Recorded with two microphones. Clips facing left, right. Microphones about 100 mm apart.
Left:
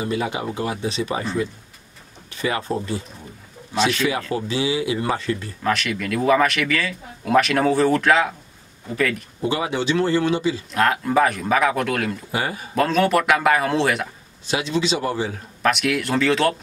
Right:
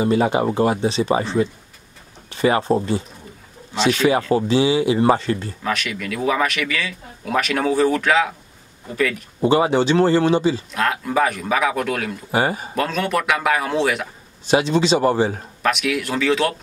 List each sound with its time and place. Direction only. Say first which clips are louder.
0.0 s speech: right 7 dB; 40° right (ahead or behind)
0.8 s speech: right 5 dB; 25° right (ahead or behind)
3.7 s speech: right 1 dB; 5° left (ahead or behind)
4.3 s speech: right 6 dB; 30° right (ahead or behind)
5.6 s speech: left 2 dB; centre (ahead or behind)
9.4 s speech: right 7 dB; 35° right (ahead or behind)
10.7 s speech: left 2 dB; centre (ahead or behind)
12.3 s speech: right 5 dB; 30° right (ahead or behind)
12.7 s speech: left 6 dB; centre (ahead or behind)
14.5 s speech: right 6 dB; 35° right (ahead or behind)
15.6 s speech: even; centre (ahead or behind)